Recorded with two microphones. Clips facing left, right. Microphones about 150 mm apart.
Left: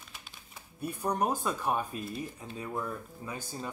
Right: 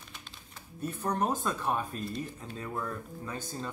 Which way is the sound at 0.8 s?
10° left (ahead or behind).